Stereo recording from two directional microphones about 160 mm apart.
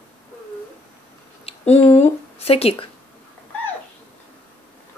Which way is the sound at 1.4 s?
40° left (ahead or behind).